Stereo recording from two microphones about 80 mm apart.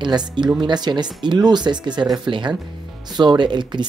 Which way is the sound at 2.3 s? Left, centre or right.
Right.